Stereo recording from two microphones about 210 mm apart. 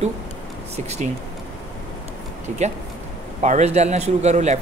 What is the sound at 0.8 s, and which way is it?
Speech, 30° right (ahead or behind).